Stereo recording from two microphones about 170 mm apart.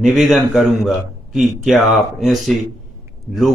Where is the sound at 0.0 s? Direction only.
Centre (ahead or behind).